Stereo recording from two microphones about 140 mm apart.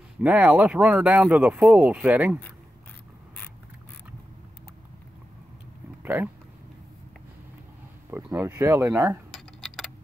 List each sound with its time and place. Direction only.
0.2 s speech: 10° right (ahead or behind)
6.0 s speech: 15° right (ahead or behind)
8.1 s speech: 15° right (ahead or behind)
9.6 s clock: centre (ahead or behind)